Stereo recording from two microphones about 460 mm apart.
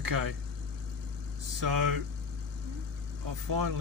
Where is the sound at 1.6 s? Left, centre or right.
Right.